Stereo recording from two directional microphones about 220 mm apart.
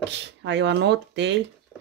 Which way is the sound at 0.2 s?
55° right (ahead or behind).